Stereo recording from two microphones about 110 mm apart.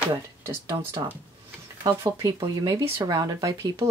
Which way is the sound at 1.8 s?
45° right (ahead or behind).